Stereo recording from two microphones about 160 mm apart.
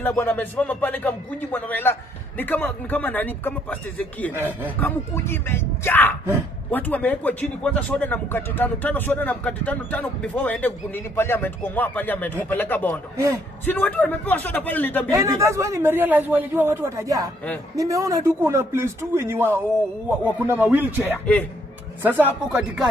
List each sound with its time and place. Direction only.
0.0 s speech: 10° left (ahead or behind)
4.3 s a man's voice: 10° right (ahead or behind)
4.7 s speech: 15° left (ahead or behind)
15.0 s a man's voice: 20° right (ahead or behind)